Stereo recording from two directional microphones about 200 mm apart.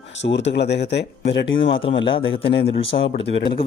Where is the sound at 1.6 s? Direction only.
25° left (ahead or behind).